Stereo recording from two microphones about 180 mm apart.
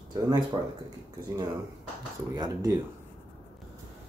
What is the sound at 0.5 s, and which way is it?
Speech, 20° right (ahead or behind).